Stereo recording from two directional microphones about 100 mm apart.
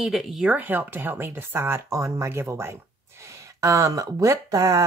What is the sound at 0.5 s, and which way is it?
Speech, 20° right (ahead or behind).